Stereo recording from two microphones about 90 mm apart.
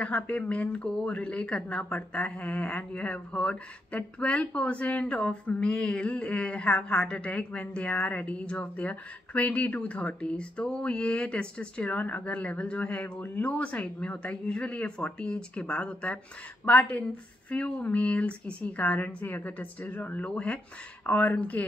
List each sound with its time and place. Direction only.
0.0 s speech: 15° left (ahead or behind)